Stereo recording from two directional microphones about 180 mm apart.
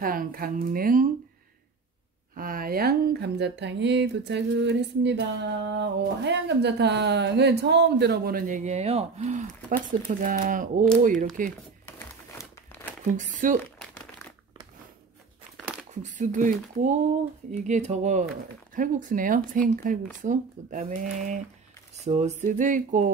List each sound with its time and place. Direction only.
0.0 s speech: 55° right (ahead or behind)
2.3 s speech: 50° right (ahead or behind)
13.1 s speech: 45° right (ahead or behind)
15.9 s speech: 40° right (ahead or behind)
21.9 s speech: 40° right (ahead or behind)